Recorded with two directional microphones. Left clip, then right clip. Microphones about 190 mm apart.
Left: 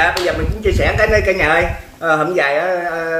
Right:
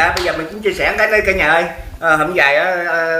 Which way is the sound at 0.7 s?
15° left (ahead or behind).